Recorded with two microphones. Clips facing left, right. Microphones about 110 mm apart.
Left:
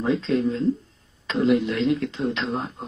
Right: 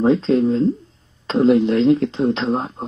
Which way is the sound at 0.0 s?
35° right (ahead or behind).